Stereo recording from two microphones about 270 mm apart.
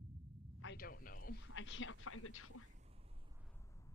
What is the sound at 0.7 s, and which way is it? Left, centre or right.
Speech, left.